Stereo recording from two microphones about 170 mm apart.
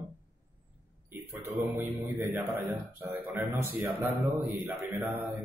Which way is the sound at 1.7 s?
10° right (ahead or behind).